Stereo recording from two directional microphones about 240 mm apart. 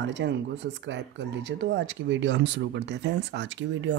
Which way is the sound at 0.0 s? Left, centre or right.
Right.